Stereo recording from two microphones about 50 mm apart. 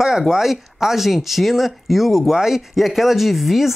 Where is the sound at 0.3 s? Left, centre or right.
Centre.